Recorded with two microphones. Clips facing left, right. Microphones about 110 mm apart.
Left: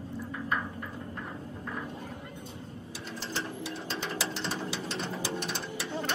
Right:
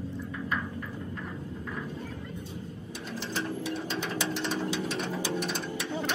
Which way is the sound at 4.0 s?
Centre (ahead or behind).